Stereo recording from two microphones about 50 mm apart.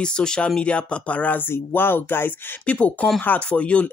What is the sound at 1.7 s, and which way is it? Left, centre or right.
Speech, left.